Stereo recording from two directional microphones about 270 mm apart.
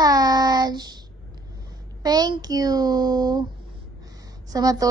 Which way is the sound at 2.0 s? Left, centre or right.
Centre.